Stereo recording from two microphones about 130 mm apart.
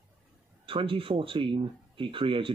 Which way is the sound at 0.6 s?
45° right (ahead or behind).